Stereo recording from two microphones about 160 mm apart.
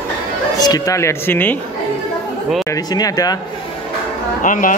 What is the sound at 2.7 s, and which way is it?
Speech, 25° left (ahead or behind).